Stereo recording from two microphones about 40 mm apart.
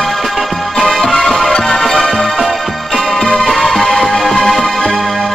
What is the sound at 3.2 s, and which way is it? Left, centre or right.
Music, centre.